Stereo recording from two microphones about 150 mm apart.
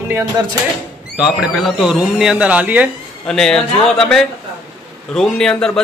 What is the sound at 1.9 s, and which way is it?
Speech, 5° right (ahead or behind).